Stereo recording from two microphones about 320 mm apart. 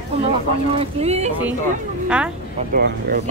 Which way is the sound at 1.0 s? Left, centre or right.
Centre.